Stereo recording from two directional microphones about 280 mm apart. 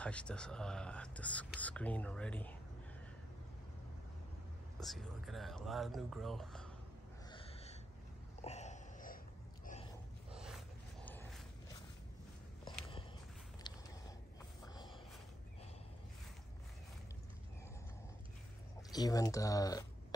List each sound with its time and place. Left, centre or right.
0.0 s speech: centre
4.7 s speech: centre
7.2 s gasp: centre
8.4 s a sound: left
10.3 s a sound: centre
11.1 s wild animals: centre
13.7 s a sound: centre
14.6 s snort: centre
18.9 s speech: centre